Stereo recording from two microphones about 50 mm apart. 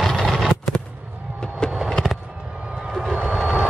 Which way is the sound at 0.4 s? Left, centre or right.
Centre.